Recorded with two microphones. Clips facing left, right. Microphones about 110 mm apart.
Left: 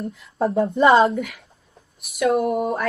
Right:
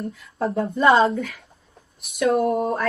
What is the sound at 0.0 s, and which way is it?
Speech, 20° left (ahead or behind).